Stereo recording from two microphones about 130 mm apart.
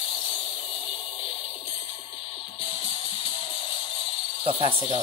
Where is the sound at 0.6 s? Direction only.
45° left (ahead or behind).